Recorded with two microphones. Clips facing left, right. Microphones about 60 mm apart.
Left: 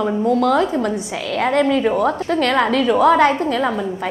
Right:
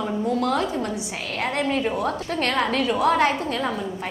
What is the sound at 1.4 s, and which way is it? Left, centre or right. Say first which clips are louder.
Speech: left 8 dB; left.